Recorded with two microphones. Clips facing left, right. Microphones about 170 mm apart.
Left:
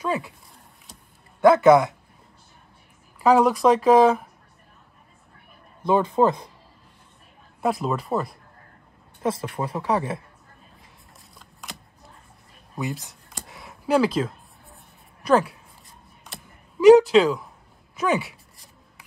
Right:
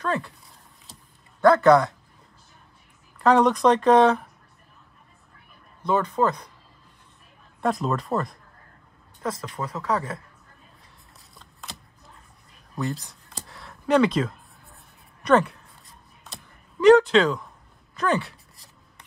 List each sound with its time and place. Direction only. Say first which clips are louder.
0.0 s speech: left 1 dB; 5° left (ahead or behind)
1.4 s a man's voice: left 2 dB; 20° left (ahead or behind)
3.2 s speech: left 1 dB; 5° left (ahead or behind)
5.9 s speech: left 3 dB; 20° left (ahead or behind)
7.6 s speech: even; 5° left (ahead or behind)
9.2 s speech: left 4 dB; 30° left (ahead or behind)
12.8 s speech: right 1 dB; 20° left (ahead or behind)
13.5 s a sound: left 1 dB; 15° left (ahead or behind)
13.8 s a sound: right 1 dB; 5° left (ahead or behind)
15.2 s speech: even; 5° left (ahead or behind)
16.3 s a sound: left 1 dB; centre (ahead or behind)
16.8 s speech: left 3 dB; 5° left (ahead or behind)
17.9 s a sound: left 1 dB; 10° left (ahead or behind)